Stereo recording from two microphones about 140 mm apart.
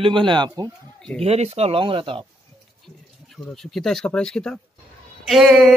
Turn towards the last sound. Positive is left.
turn(degrees=0)  # may be behind; listen again after turning